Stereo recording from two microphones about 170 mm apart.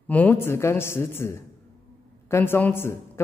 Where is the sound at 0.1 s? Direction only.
10° left (ahead or behind).